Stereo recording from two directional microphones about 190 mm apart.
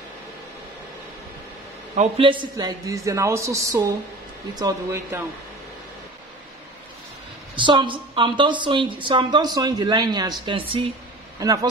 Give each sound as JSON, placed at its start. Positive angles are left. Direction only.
{"t": 2.0, "sound": "a man's voice", "side_deg": -30}
{"t": 7.5, "sound": "a woman's voice", "side_deg": -25}